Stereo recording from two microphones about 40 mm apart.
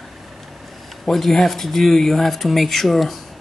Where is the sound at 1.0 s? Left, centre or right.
Centre.